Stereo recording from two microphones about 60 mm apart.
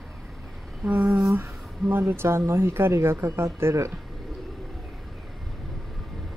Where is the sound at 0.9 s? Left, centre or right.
Right.